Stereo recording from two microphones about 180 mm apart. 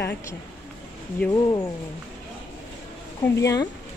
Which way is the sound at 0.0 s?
15° left (ahead or behind).